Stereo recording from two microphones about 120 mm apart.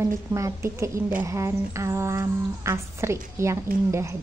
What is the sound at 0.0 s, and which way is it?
Speech, 25° right (ahead or behind).